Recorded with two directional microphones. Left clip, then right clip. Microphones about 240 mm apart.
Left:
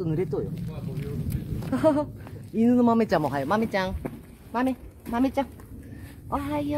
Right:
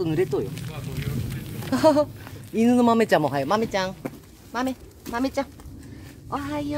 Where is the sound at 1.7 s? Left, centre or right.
Right.